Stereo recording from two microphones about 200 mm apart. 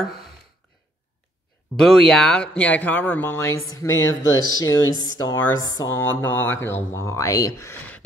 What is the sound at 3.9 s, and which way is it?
Speech, 80° left.